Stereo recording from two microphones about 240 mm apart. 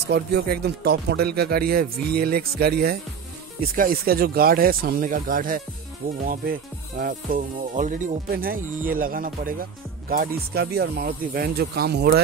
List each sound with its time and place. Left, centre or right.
0.0 s speech: right